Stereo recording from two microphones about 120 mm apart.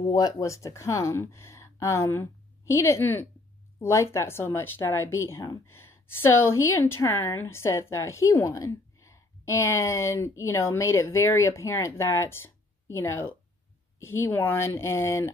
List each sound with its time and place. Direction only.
0.0 s a woman's voice: 30° left (ahead or behind)